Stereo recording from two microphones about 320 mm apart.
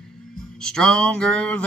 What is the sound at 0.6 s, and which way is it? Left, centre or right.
Mantra, centre.